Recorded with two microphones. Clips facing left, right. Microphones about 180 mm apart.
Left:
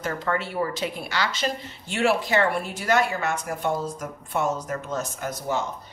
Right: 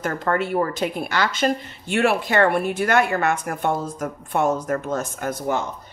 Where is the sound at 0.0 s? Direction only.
50° right (ahead or behind).